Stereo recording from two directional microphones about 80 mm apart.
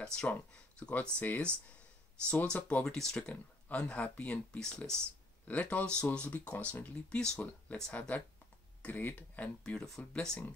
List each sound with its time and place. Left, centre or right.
0.0 s speech: centre
9.6 s speech: centre